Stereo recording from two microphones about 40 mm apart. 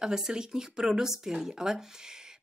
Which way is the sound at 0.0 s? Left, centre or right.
Centre.